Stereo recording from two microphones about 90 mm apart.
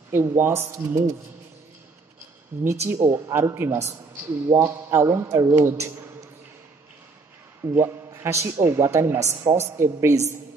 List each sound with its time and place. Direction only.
0.1 s a man's voice: 30° right (ahead or behind)
2.6 s a man's voice: 30° right (ahead or behind)
7.7 s a man's voice: 30° right (ahead or behind)